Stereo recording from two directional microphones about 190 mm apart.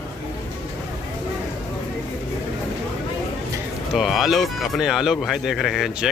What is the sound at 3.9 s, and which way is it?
Speech, centre (ahead or behind).